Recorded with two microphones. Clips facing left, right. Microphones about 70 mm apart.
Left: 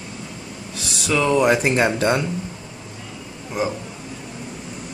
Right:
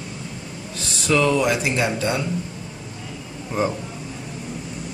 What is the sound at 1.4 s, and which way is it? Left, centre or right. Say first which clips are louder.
Speech: left 4 dB; left.